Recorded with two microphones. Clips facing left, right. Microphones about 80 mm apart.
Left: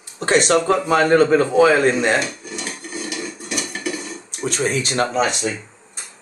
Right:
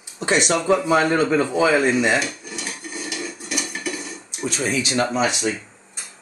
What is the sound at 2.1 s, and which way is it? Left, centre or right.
Dishes, centre.